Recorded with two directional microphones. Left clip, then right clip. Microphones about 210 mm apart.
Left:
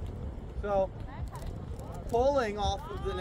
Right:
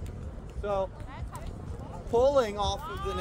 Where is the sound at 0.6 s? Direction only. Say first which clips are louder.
Left 1 dB; 25° right (ahead or behind).